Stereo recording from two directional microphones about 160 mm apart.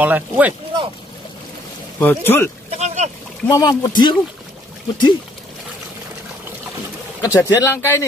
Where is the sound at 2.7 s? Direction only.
45° right (ahead or behind).